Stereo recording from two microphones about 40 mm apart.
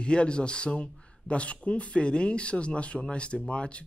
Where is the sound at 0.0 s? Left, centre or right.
Left.